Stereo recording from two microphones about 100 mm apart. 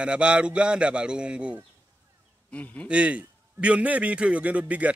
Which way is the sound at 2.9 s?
10° right (ahead or behind).